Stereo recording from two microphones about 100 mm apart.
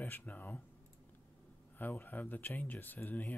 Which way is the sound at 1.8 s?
20° left (ahead or behind).